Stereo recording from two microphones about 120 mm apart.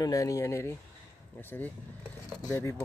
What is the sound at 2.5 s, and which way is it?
Speech, 20° left (ahead or behind).